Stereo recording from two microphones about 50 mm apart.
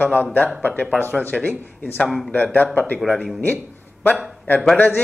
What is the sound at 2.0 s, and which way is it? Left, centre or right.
Speech, centre.